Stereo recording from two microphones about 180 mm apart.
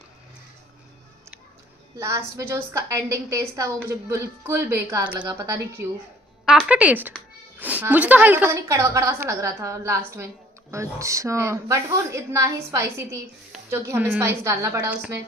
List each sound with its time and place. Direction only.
2.0 s a woman's voice: 15° right (ahead or behind)
6.4 s a woman's voice: 5° right (ahead or behind)